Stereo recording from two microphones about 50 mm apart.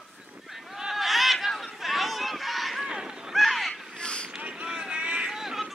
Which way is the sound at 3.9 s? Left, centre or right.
Left.